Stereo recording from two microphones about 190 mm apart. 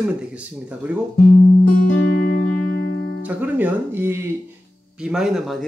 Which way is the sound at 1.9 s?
60° left (ahead or behind).